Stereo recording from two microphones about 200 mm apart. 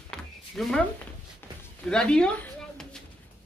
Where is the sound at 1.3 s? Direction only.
5° left (ahead or behind).